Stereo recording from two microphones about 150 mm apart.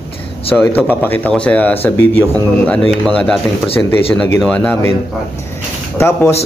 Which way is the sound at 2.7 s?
Centre (ahead or behind).